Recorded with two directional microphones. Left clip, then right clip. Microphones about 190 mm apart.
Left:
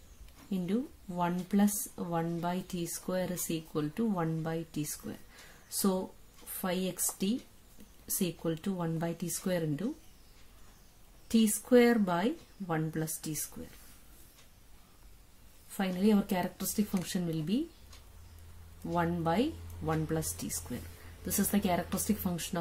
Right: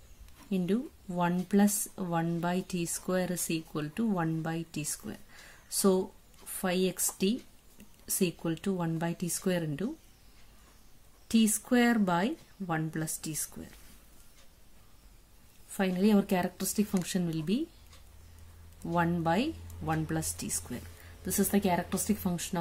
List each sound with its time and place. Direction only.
0.5 s speech: 25° right (ahead or behind)
11.2 s speech: 20° right (ahead or behind)
15.7 s speech: 20° right (ahead or behind)
18.9 s a woman's voice: 20° right (ahead or behind)